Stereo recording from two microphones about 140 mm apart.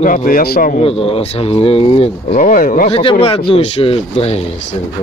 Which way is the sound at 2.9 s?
40° left (ahead or behind).